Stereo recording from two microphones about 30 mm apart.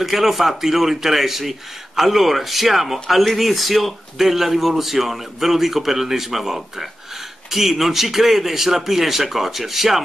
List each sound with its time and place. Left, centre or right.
0.0 s speech: centre